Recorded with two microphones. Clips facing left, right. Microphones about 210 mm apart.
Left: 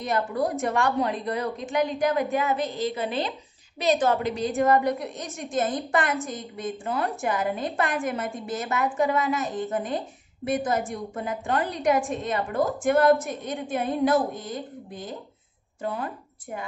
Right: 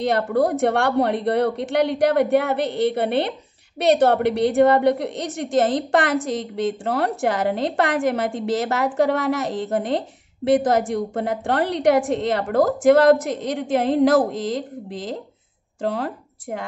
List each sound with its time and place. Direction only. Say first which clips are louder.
0.0 s a woman's voice: right 6 dB; 70° right (ahead or behind)